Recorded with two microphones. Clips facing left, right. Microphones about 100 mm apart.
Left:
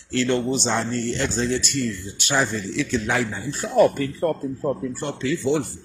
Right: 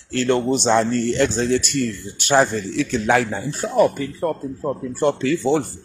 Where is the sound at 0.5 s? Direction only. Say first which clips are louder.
Right 6 dB; 65° right (ahead or behind).